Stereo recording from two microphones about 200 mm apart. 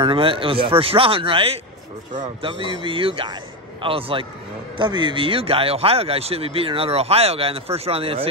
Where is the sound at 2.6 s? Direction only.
25° right (ahead or behind).